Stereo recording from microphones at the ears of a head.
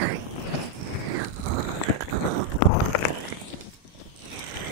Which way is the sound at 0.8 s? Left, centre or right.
Right.